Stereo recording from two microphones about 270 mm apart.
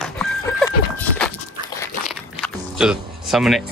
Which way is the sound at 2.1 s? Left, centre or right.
Centre.